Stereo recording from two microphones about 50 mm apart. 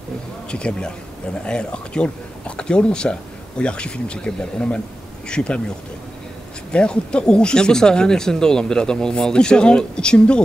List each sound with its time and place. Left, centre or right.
0.5 s speech: centre
6.7 s speech: centre